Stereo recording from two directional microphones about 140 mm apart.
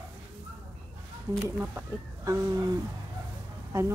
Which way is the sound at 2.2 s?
25° right (ahead or behind).